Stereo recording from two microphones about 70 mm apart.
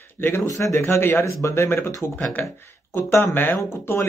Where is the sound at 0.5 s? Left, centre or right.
Left.